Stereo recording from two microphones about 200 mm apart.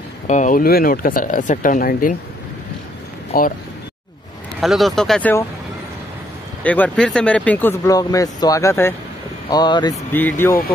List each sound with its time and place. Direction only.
0.3 s speech: 40° left (ahead or behind)
3.3 s speech: 45° left (ahead or behind)
4.6 s speech: centre (ahead or behind)
6.6 s speech: 5° left (ahead or behind)
10.1 s speech: 10° left (ahead or behind)